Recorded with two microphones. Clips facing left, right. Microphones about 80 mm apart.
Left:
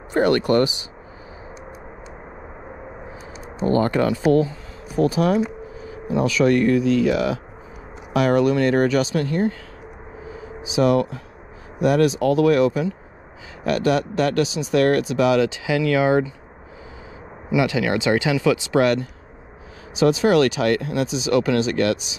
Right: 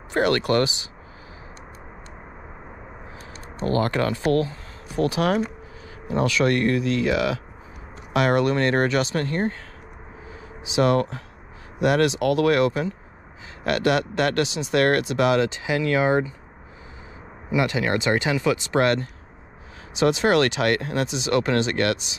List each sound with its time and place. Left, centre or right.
0.1 s speech: right
3.9 s a man's voice: right
8.2 s speech: right
10.3 s a sound: right
11.8 s a man's voice: right
17.5 s speech: right